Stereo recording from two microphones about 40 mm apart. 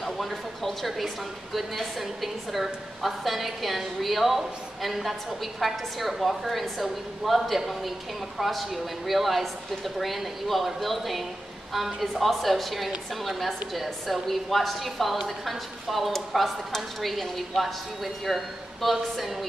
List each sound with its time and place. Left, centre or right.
0.0 s speech: centre